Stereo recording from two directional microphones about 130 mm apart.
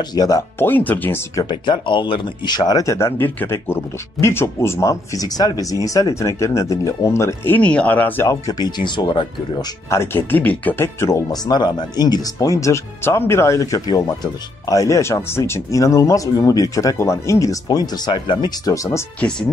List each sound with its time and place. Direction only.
0.1 s speech: 30° left (ahead or behind)
0.6 s speech: 15° left (ahead or behind)
1.4 s speech: 35° left (ahead or behind)
9.9 s speech: 15° left (ahead or behind)